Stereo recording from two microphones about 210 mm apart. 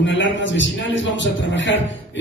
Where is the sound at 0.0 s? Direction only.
60° left (ahead or behind).